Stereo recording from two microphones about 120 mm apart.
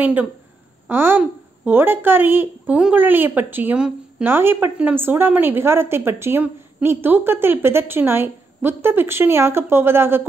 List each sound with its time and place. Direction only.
0.0 s a woman's voice: 15° right (ahead or behind)